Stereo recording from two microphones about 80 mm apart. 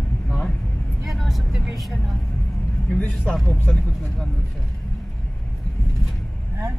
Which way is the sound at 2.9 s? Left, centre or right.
Centre.